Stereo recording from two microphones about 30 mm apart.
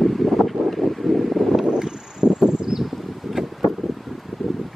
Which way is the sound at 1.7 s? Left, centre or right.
Right.